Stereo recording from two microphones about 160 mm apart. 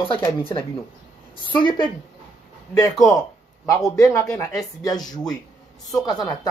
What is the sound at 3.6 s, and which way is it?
A woman's voice, 20° left (ahead or behind).